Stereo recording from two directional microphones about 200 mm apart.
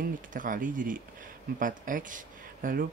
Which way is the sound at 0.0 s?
40° right (ahead or behind).